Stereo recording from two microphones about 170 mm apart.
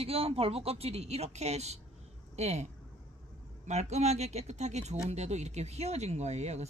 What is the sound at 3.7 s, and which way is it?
Speech, 40° right (ahead or behind).